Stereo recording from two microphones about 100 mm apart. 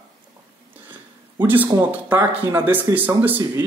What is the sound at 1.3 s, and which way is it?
Speech, 20° right (ahead or behind).